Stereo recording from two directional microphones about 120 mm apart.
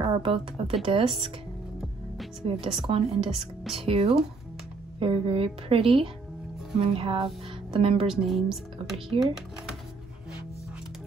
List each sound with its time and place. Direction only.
0.0 s a woman's voice: 40° right (ahead or behind)
2.4 s a woman's voice: 45° right (ahead or behind)
8.1 s speech: centre (ahead or behind)